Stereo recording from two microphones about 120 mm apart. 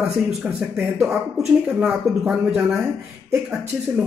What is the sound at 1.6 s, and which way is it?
Speech, 5° right (ahead or behind).